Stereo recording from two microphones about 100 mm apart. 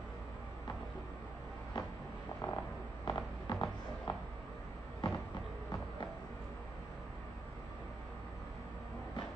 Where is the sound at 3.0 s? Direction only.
50° left (ahead or behind).